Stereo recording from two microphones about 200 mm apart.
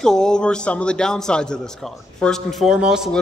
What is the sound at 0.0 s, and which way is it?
A man's voice, 5° left (ahead or behind).